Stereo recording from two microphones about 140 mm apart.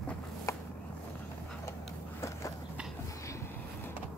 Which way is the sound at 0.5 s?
25° left (ahead or behind).